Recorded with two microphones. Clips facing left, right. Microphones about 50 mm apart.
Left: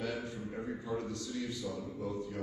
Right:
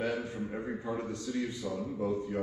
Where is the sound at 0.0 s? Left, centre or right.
Right.